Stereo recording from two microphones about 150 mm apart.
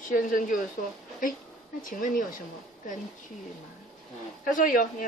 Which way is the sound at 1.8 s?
65° left (ahead or behind).